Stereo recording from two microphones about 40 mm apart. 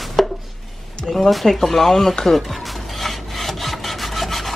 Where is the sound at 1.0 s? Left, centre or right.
Centre.